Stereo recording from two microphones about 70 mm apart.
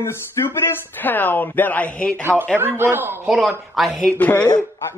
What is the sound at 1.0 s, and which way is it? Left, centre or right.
Speech, left.